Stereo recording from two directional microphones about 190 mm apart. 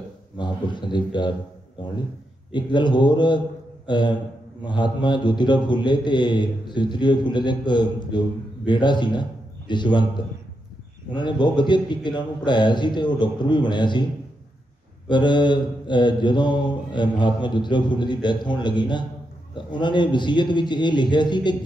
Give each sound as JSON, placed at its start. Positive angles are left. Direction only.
{"t": 0.4, "sound": "a man's voice", "side_deg": 25}
{"t": 2.5, "sound": "mantra", "side_deg": 25}
{"t": 8.6, "sound": "a man's voice", "side_deg": 25}
{"t": 11.1, "sound": "mantra", "side_deg": 25}
{"t": 15.0, "sound": "mantra", "side_deg": 25}